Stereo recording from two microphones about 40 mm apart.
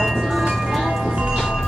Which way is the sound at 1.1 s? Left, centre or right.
Right.